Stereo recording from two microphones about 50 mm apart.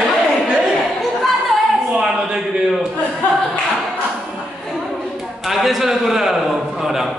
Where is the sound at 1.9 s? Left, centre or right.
Centre.